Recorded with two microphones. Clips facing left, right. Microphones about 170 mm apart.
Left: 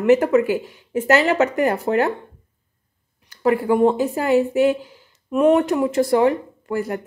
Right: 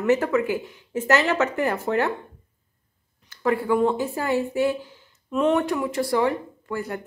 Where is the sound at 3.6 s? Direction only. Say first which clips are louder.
Left 5 dB; 40° left (ahead or behind).